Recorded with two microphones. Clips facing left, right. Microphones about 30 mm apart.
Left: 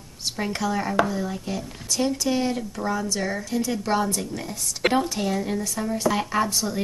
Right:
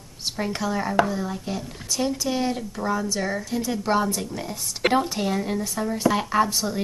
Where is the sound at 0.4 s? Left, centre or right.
Centre.